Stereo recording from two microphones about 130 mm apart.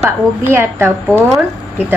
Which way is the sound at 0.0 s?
20° right (ahead or behind).